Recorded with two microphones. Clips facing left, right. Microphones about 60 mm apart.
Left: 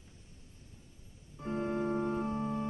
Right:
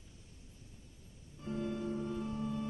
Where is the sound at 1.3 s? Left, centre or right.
Left.